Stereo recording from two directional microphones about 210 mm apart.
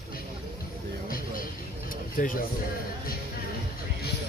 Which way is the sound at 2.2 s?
40° left (ahead or behind).